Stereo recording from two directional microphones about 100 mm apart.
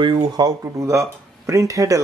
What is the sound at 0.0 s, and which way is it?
Speech, 55° right (ahead or behind).